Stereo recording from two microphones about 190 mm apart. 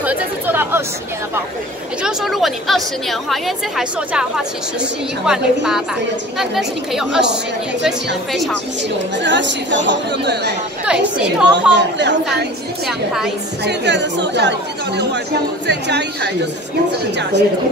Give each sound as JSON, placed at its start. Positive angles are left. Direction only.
{"t": 0.0, "sound": "speech", "side_deg": -10}
{"t": 2.0, "sound": "a woman's voice", "side_deg": 0}
{"t": 9.2, "sound": "speech", "side_deg": -70}
{"t": 10.9, "sound": "a woman's voice", "side_deg": -5}
{"t": 11.7, "sound": "speech", "side_deg": -65}
{"t": 12.8, "sound": "a woman's voice", "side_deg": 0}
{"t": 13.7, "sound": "speech", "side_deg": -65}
{"t": 15.6, "sound": "speech", "side_deg": -65}